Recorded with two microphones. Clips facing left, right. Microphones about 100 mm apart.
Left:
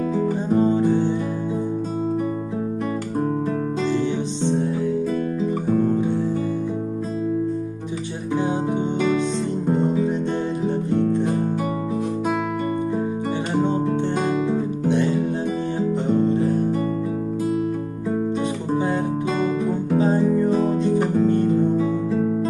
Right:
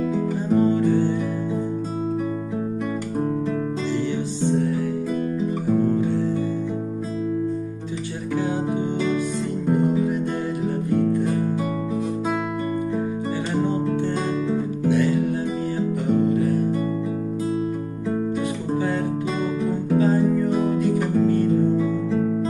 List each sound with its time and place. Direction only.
0.6 s music: 20° left (ahead or behind)
9.7 s music: 25° left (ahead or behind)
10.6 s guitar: 25° left (ahead or behind)
14.9 s guitar: 25° left (ahead or behind)
16.3 s guitar: 30° left (ahead or behind)
19.9 s guitar: 25° left (ahead or behind)
20.7 s music: 25° left (ahead or behind)